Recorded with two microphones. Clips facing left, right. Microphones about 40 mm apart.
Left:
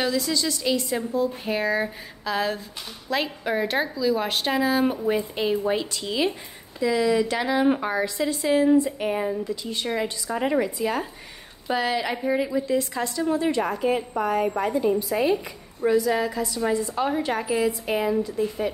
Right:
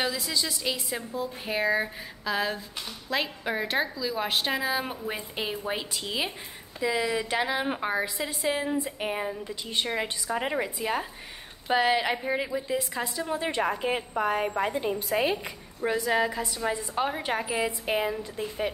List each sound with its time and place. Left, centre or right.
0.0 s a woman's voice: centre
9.6 s a woman's voice: right
10.3 s a woman's voice: centre
13.4 s a woman's voice: right